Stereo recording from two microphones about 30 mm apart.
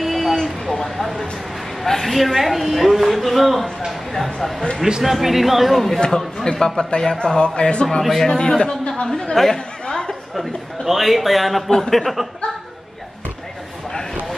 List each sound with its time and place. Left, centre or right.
0.0 s vehicle: centre
0.4 s vehicle: centre
0.8 s speech: centre
4.6 s speech: left
5.0 s speech: centre
5.9 s speech: left
9.3 s speech: centre
9.8 s a sound: left
10.3 s speech: centre